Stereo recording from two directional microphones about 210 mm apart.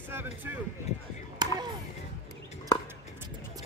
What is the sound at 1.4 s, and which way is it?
Chop, 20° right (ahead or behind).